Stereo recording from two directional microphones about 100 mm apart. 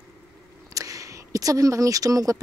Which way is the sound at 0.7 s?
35° right (ahead or behind).